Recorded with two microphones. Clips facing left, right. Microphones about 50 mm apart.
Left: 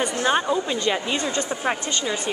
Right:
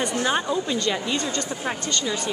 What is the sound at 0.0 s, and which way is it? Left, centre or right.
A woman's voice, centre.